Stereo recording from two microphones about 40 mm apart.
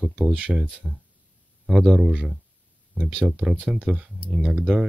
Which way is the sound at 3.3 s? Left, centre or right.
Right.